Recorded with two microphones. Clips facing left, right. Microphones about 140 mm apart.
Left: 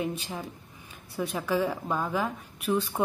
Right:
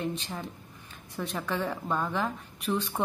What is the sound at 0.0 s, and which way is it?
Speech, 10° left (ahead or behind).